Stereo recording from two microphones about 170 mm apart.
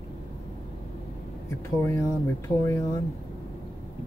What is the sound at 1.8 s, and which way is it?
Speech, 15° left (ahead or behind).